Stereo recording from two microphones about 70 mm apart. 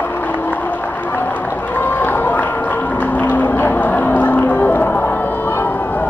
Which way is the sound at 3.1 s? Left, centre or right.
Left.